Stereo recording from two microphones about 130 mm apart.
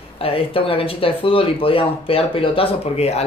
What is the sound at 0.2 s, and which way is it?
Speech, 45° left (ahead or behind).